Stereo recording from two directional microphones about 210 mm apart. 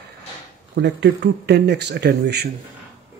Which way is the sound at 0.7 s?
55° right (ahead or behind).